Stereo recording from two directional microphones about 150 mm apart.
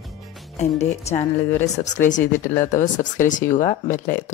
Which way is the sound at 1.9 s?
55° left (ahead or behind).